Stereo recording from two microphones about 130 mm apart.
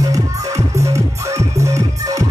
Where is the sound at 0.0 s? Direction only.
25° right (ahead or behind).